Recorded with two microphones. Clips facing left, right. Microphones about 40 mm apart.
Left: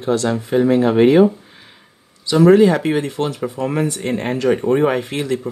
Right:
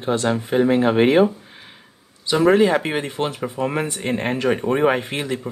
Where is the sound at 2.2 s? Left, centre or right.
Centre.